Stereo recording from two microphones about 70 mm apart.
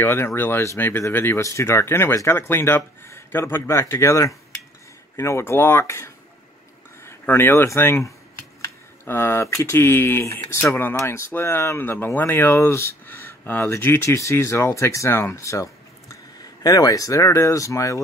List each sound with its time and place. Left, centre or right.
0.0 s speech: left
1.4 s speech: left
9.0 s speech: left
14.1 s speech: left